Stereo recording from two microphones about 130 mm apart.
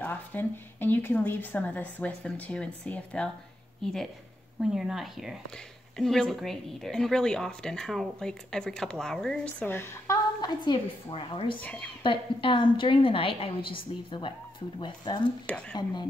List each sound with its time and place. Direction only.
0.0 s a woman's voice: 15° left (ahead or behind); by 16.1 s 35° left (ahead or behind)